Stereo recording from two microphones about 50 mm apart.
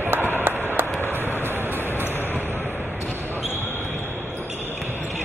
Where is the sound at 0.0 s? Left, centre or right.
Right.